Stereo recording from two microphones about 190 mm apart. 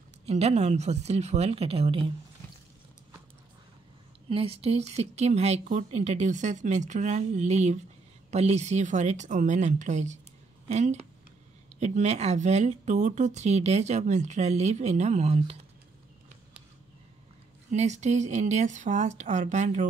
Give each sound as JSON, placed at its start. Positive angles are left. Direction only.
{"t": 0.3, "sound": "speech", "side_deg": -35}
{"t": 4.3, "sound": "speech", "side_deg": -30}
{"t": 17.6, "sound": "speech", "side_deg": -40}